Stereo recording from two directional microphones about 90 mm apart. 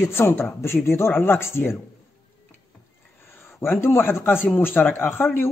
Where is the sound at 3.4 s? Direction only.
25° left (ahead or behind).